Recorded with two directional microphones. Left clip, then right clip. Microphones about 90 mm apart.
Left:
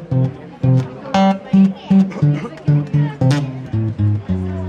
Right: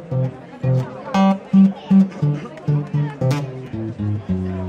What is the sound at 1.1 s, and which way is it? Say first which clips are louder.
Music: left 3 dB; 15° left (ahead or behind).